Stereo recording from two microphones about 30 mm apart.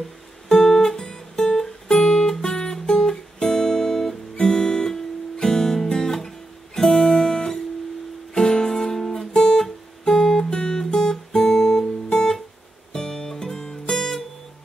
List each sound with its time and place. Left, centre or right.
0.5 s guitar: left
10.5 s guitar: left
10.8 s guitar: centre
12.9 s music: centre